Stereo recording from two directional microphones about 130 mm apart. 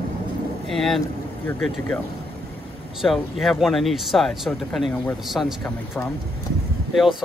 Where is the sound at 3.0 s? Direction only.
Centre (ahead or behind).